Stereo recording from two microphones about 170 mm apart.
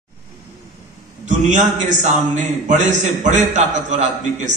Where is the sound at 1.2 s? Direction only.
45° right (ahead or behind).